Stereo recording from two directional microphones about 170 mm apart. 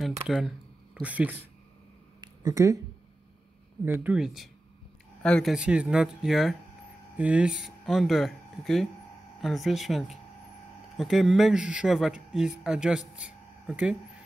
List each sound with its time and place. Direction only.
0.0 s speech: centre (ahead or behind)
2.2 s a sound: 20° right (ahead or behind)
3.8 s speech: 10° right (ahead or behind)